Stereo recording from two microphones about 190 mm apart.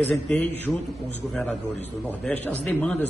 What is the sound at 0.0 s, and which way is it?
A man's voice, 10° left (ahead or behind).